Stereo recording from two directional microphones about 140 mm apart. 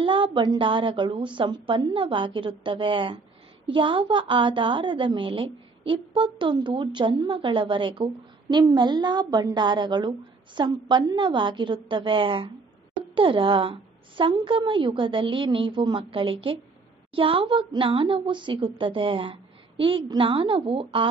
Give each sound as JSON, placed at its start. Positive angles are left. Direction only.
{"t": 0.0, "sound": "a woman's voice", "side_deg": -35}